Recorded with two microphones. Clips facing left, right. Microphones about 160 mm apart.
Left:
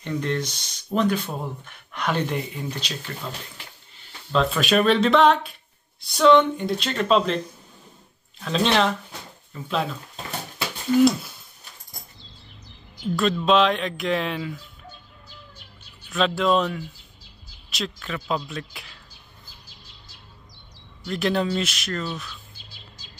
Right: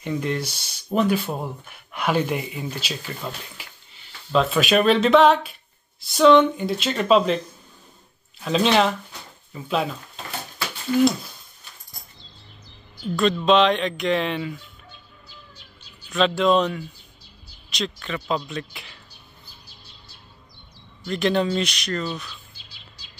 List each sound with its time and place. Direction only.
0.0 s speech: 10° right (ahead or behind)
8.5 s speech: 5° right (ahead or behind)
13.1 s speech: centre (ahead or behind)
16.1 s speech: centre (ahead or behind)
21.1 s speech: centre (ahead or behind)
22.6 s bird: 45° left (ahead or behind)